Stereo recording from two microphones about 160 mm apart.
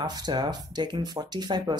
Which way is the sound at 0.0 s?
25° right (ahead or behind).